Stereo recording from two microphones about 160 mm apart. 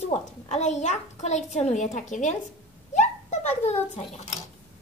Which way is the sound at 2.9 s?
45° left (ahead or behind).